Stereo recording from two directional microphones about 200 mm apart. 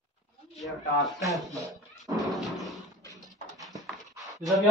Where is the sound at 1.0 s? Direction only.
Centre (ahead or behind).